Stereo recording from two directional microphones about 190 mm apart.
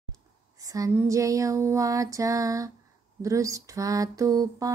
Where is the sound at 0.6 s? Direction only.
15° right (ahead or behind).